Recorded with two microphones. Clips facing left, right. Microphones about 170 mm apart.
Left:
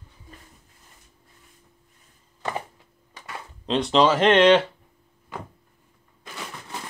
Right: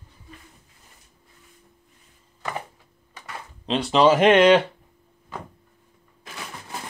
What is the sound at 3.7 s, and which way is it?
Speech, 5° right (ahead or behind).